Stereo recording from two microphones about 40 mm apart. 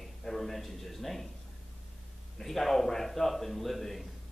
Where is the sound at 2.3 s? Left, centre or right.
Centre.